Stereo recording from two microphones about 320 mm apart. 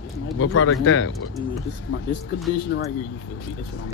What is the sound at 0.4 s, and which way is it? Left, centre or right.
Speech, left.